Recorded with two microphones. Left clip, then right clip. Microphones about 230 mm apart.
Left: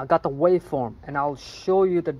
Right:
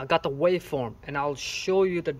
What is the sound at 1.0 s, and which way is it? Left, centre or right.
Speech, centre.